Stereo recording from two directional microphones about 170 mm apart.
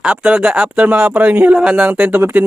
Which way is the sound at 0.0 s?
5° right (ahead or behind).